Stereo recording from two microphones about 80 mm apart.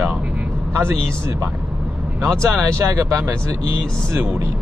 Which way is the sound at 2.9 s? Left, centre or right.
Right.